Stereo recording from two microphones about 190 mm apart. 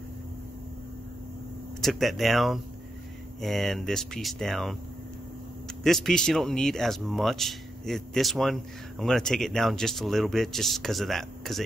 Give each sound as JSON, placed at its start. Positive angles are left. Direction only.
{"t": 1.8, "sound": "speech", "side_deg": 0}
{"t": 5.9, "sound": "speech", "side_deg": 0}